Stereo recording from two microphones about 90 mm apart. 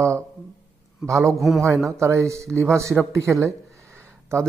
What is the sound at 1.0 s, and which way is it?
Speech, 35° right (ahead or behind).